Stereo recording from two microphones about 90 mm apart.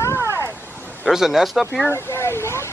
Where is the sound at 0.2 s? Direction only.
25° right (ahead or behind).